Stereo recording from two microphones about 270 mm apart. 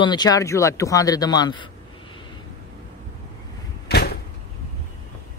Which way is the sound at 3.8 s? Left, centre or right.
Left.